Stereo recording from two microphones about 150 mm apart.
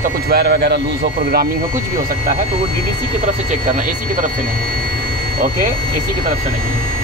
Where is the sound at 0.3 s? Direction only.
90° right.